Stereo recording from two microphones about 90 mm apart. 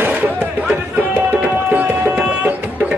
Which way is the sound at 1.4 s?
15° right (ahead or behind).